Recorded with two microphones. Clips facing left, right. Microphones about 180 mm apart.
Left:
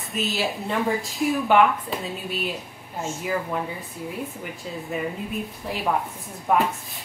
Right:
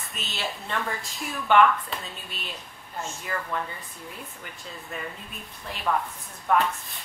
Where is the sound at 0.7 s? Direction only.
20° left (ahead or behind).